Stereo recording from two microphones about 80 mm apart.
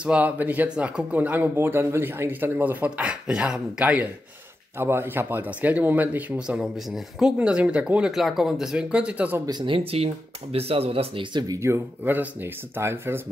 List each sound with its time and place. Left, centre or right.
0.0 s speech: centre
4.7 s speech: right
9.5 s speech: right
11.4 s speech: right
12.0 s speech: right